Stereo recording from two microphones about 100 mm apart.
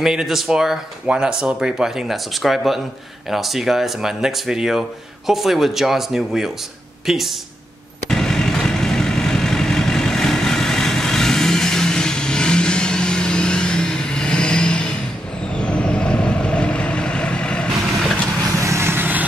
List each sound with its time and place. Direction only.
0.0 s speech: 5° right (ahead or behind)
8.1 s vehicle: 5° left (ahead or behind)
18.6 s vehicle: 30° right (ahead or behind)